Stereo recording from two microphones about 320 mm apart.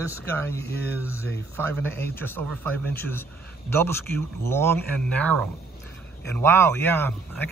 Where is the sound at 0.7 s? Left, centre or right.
Left.